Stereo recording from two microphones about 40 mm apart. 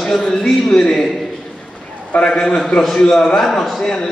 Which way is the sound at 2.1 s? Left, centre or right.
Left.